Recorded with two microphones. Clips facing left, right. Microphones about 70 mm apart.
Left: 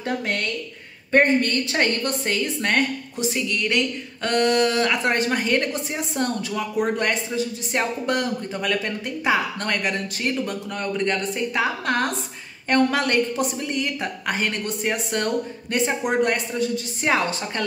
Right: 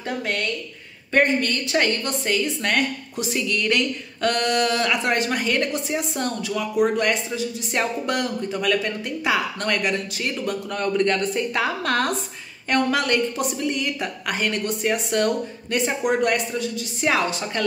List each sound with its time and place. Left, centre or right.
1.1 s speech: left
2.6 s a woman's voice: left
3.3 s speech: centre
10.7 s speech: centre
12.6 s speech: left